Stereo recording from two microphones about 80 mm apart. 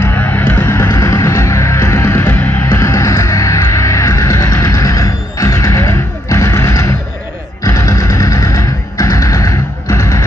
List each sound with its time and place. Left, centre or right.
0.0 s music: left
0.8 s music: left
2.7 s music: left